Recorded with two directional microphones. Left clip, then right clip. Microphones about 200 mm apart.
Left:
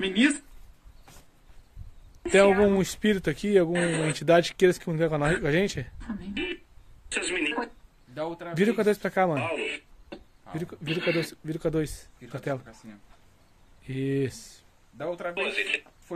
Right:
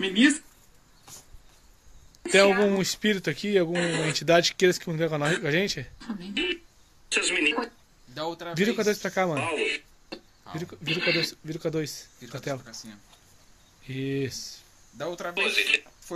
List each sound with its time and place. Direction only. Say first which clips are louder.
0.0 s speech: right 2 dB; 5° left (ahead or behind)
2.3 s speech: even; 10° left (ahead or behind)
13.8 s speech: left 2 dB; 15° left (ahead or behind)
15.3 s speech: right 6 dB; 10° left (ahead or behind)